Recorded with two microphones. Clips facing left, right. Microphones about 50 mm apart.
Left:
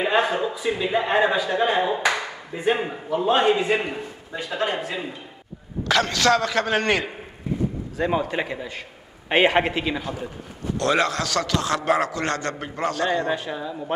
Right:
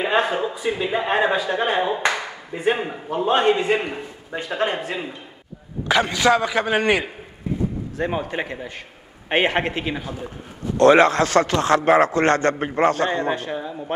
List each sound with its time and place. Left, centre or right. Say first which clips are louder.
0.0 s a sound: right 1 dB; centre
0.8 s a man's voice: even; centre
4.5 s speech: right 2 dB; right
5.9 s a man's voice: right 2 dB; centre
9.3 s a man's voice: left 1 dB; centre; by 13.4 s right
13.5 s speech: right 1 dB; right